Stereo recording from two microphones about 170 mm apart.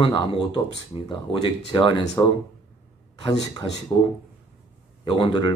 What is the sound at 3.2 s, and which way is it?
Speech, 25° left (ahead or behind).